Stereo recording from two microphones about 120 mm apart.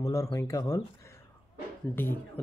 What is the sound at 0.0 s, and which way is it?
Speech, 25° left (ahead or behind).